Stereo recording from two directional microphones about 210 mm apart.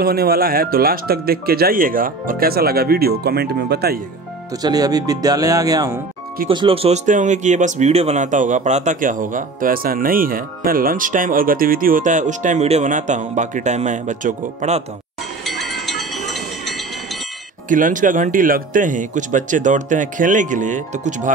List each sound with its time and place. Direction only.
0.0 s speech: 45° right (ahead or behind)
4.6 s speech: 20° right (ahead or behind); by 14.8 s 35° right (ahead or behind)
15.4 s a sound: centre (ahead or behind)
17.6 s speech: 40° right (ahead or behind)